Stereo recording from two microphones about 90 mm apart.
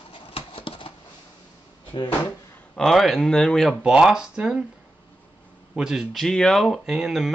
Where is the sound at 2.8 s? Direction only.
Centre (ahead or behind).